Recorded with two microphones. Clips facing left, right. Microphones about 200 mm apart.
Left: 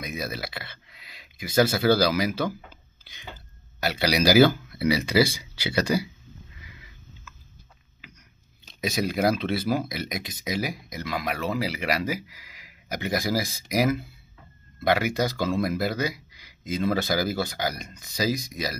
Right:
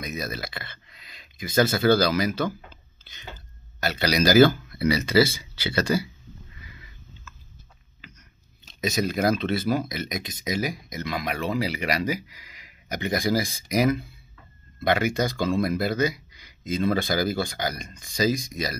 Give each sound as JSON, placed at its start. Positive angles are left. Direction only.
{"t": 0.0, "sound": "speech", "side_deg": 10}
{"t": 8.8, "sound": "speech", "side_deg": 10}